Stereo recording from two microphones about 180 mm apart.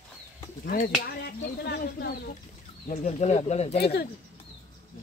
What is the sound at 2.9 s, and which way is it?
Speech, 40° left (ahead or behind).